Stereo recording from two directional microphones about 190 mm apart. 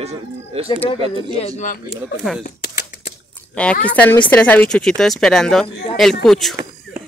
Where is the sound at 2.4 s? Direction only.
40° left (ahead or behind).